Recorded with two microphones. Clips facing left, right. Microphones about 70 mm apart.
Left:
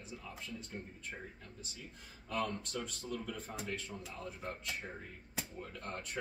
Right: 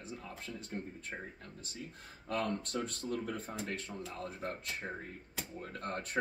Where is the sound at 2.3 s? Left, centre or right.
Right.